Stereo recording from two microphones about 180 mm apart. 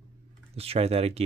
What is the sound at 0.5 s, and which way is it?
Speech, 35° right (ahead or behind).